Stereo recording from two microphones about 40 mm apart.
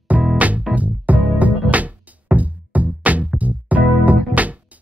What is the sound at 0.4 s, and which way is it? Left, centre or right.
Music, right.